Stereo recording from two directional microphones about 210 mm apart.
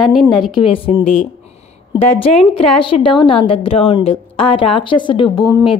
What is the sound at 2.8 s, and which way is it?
A woman's voice, 25° left (ahead or behind).